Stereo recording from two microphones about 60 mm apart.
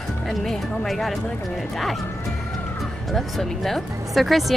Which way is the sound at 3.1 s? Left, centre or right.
Centre.